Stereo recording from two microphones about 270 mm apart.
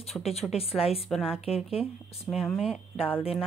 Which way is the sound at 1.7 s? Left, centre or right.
Left.